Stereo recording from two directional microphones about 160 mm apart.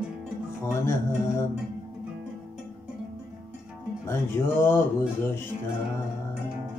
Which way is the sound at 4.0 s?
15° left (ahead or behind).